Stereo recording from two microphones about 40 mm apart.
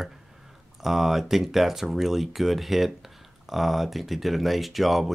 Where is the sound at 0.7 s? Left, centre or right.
Centre.